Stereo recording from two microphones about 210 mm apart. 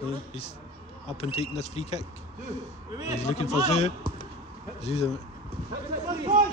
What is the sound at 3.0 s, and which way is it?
Speech, 30° left (ahead or behind).